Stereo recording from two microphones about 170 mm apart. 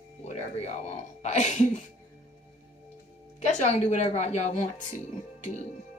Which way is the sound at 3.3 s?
45° left (ahead or behind).